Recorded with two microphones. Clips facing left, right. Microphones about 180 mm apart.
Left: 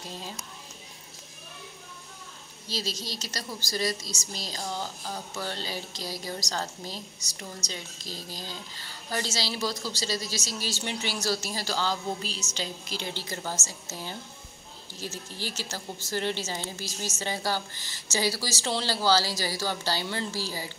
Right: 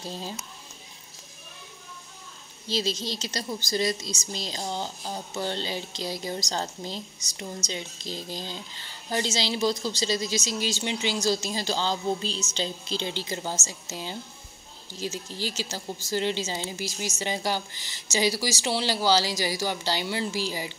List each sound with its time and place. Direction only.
2.7 s speech: 25° right (ahead or behind)